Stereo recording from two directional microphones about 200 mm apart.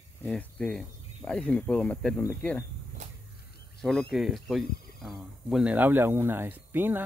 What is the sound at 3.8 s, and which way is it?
Speech, 5° left (ahead or behind).